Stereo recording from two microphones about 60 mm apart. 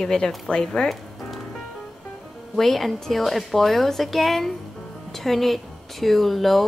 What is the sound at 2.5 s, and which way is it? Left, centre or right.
Speech, centre.